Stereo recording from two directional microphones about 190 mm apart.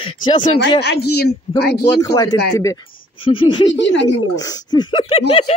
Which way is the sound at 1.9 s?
20° left (ahead or behind).